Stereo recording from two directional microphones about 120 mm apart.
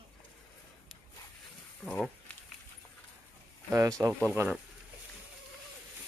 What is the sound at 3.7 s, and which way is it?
Speech, 25° right (ahead or behind).